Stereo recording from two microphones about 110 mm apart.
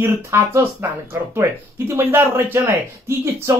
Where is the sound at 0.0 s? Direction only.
25° right (ahead or behind).